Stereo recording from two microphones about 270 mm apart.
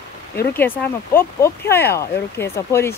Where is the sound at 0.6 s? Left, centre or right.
Centre.